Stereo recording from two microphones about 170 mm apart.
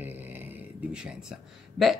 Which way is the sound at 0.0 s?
10° right (ahead or behind).